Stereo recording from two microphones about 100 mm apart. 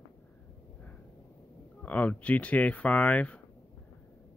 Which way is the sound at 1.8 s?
15° left (ahead or behind).